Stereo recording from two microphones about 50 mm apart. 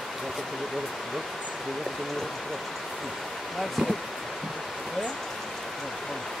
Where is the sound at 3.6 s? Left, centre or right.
Centre.